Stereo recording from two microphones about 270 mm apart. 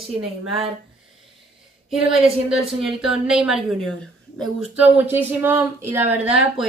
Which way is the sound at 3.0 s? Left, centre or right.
Centre.